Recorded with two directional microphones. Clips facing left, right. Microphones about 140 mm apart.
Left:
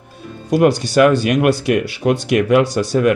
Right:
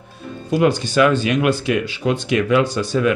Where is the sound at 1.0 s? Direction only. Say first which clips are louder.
Left 4 dB; 50° left (ahead or behind).